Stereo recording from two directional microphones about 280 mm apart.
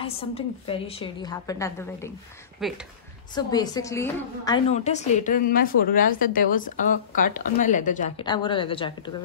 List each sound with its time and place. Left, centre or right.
0.0 s a woman's voice: left
2.6 s speech: centre
3.3 s a woman's voice: centre
4.7 s a woman's voice: left
8.3 s a woman's voice: centre